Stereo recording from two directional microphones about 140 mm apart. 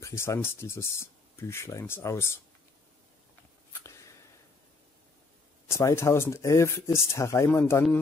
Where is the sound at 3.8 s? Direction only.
20° left (ahead or behind).